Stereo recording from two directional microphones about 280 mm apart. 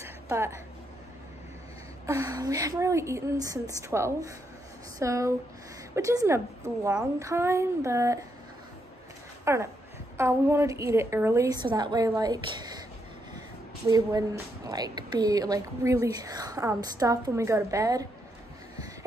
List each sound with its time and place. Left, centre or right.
0.0 s a sound: centre
2.0 s a woman's voice: centre
9.4 s a woman's voice: centre
13.8 s a woman's voice: centre